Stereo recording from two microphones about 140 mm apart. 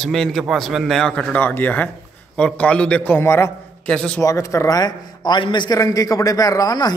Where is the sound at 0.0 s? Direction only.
5° left (ahead or behind); by 3.5 s 20° left (ahead or behind).